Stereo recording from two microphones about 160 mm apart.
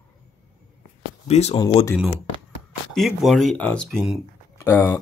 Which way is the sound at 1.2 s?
40° left (ahead or behind).